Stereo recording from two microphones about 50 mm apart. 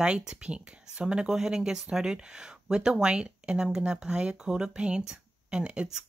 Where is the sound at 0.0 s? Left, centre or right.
Right.